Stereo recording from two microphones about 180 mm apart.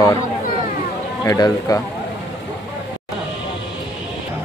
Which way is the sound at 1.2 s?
20° left (ahead or behind).